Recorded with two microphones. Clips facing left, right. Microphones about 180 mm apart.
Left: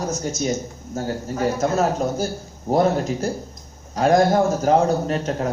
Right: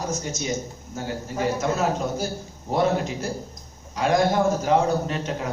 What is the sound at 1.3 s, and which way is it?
A man's voice, 40° left (ahead or behind).